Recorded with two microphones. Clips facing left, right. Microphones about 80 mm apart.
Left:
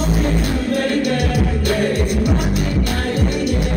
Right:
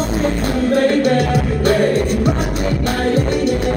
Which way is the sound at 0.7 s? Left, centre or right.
Right.